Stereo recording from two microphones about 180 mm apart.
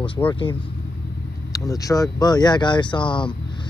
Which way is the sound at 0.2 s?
20° left (ahead or behind).